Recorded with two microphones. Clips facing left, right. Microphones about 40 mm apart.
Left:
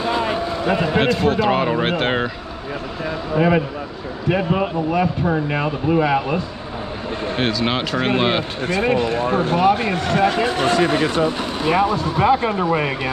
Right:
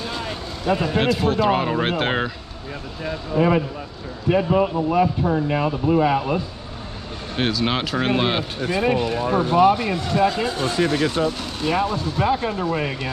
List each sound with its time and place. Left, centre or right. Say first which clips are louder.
0.0 s a sound: left 8 dB; left
1.0 s speech: even; centre
3.3 s speech: left 1 dB; left
7.3 s speech: even; centre
9.1 s speech: left 1 dB; left
10.8 s speech: left 3 dB; left